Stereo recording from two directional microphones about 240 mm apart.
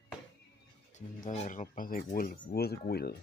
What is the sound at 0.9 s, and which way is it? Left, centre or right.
Speech, left.